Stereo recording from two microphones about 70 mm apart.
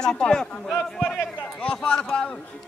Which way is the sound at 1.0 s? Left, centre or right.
Centre.